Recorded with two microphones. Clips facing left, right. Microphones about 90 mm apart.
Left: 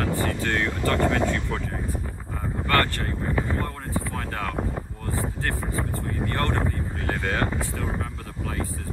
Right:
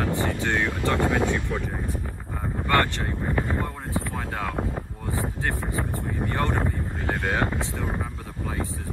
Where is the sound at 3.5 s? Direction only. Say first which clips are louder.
Even; 15° right (ahead or behind).